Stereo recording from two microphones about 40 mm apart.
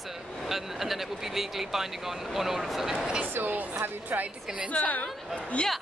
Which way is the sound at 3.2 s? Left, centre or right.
Right.